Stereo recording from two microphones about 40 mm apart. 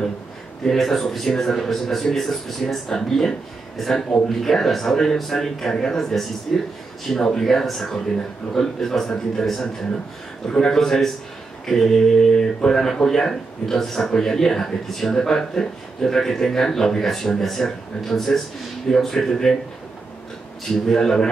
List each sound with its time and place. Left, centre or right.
0.7 s a man's voice: centre
10.8 s speech: centre
20.7 s speech: centre